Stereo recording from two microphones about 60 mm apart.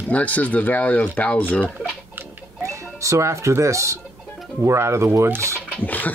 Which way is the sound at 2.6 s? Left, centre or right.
Right.